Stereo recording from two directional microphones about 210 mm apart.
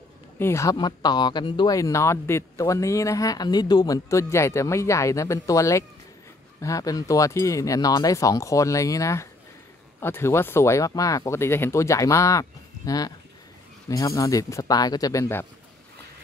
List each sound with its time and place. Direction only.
0.4 s speech: 15° left (ahead or behind)